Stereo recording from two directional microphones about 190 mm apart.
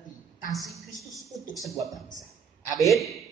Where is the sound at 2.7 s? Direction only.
Centre (ahead or behind).